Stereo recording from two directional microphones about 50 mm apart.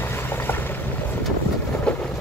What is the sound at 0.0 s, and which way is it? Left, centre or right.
Boat, left.